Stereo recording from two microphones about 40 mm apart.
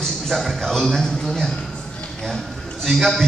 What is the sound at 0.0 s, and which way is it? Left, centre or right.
A man's voice, centre.